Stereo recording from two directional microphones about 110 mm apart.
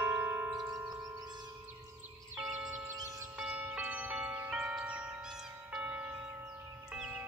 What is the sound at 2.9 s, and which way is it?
Music, 30° right (ahead or behind).